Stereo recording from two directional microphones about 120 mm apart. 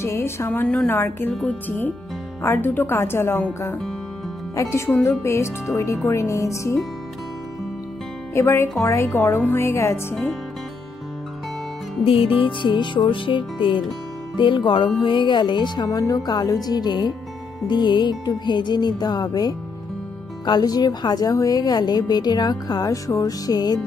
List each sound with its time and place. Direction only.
0.0 s a woman's voice: 20° left (ahead or behind)
4.6 s a woman's voice: 20° left (ahead or behind)
8.4 s a woman's voice: 20° left (ahead or behind)
12.0 s music: 50° left (ahead or behind)
15.0 s a woman's voice: 40° left (ahead or behind)